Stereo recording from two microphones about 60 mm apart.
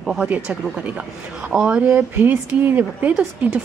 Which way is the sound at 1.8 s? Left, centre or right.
Right.